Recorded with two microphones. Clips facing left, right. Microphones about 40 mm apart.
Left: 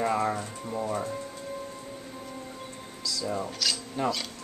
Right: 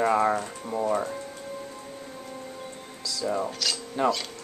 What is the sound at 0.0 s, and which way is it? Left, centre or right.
Speech, centre.